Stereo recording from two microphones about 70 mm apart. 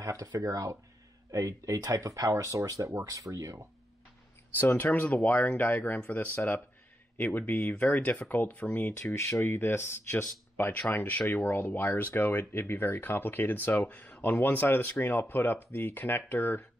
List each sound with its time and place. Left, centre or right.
0.0 s speech: right
4.6 s speech: left
7.3 s speech: left
9.1 s speech: left